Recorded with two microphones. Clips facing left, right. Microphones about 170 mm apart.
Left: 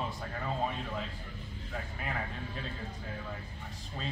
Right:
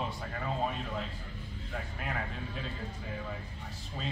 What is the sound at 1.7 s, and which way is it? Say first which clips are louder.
Speech: even; centre (ahead or behind).